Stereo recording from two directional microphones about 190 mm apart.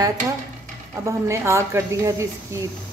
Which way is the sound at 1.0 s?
15° right (ahead or behind).